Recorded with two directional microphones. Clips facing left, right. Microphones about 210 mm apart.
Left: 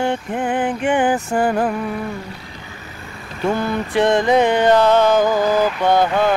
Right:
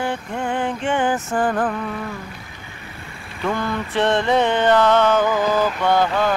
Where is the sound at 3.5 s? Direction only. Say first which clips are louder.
Left 3 dB; 15° left (ahead or behind).